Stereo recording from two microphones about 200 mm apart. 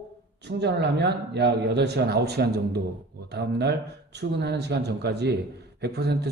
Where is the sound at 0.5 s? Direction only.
60° right (ahead or behind).